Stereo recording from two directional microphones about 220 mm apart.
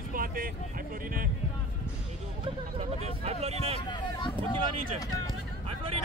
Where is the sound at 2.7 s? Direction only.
30° right (ahead or behind).